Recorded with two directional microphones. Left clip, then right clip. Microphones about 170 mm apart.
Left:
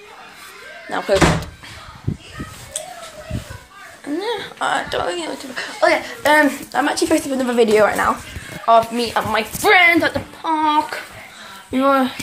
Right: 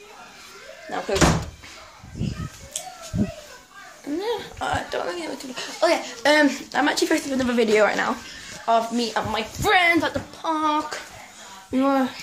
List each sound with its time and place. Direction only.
0.8 s speech: 5° left (ahead or behind)
4.2 s speech: 15° right (ahead or behind)
5.5 s speech: 30° right (ahead or behind)
6.7 s speech: 10° right (ahead or behind)
7.1 s speech: centre (ahead or behind)
7.8 s speech: 10° right (ahead or behind)
9.3 s speech: centre (ahead or behind); by 11.0 s 15° right (ahead or behind)
11.7 s speech: 5° right (ahead or behind)